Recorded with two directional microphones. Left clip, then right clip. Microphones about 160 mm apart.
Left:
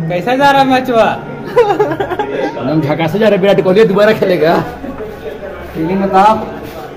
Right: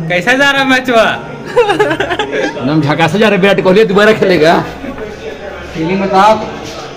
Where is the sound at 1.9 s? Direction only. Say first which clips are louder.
Right 2 dB; 15° left (ahead or behind).